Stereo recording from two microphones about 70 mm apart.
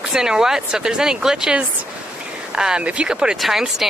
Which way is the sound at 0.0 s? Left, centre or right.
Centre.